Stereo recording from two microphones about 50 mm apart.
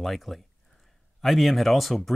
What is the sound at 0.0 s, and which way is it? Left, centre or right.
Speech, centre.